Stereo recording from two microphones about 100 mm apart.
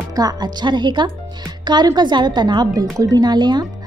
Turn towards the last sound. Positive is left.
turn(degrees=-45)  # may be behind; listen again after turning